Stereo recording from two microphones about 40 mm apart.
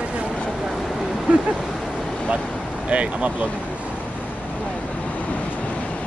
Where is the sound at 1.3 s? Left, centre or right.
Right.